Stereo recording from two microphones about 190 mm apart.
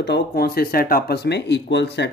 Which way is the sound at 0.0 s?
55° left (ahead or behind).